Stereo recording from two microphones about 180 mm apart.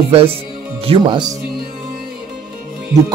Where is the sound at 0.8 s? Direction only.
30° right (ahead or behind).